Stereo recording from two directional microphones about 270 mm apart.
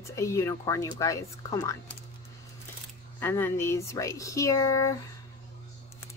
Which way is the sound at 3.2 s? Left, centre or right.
Centre.